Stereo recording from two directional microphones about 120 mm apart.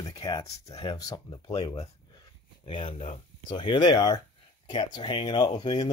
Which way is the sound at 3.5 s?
40° left (ahead or behind).